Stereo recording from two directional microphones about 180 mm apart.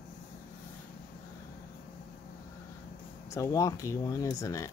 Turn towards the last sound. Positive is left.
turn(degrees=20)  # may be behind; listen again after turning